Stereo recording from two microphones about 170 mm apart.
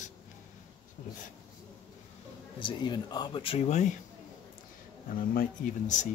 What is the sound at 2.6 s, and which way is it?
Speech, 25° left (ahead or behind).